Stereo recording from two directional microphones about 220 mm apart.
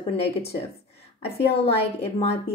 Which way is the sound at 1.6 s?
30° left (ahead or behind).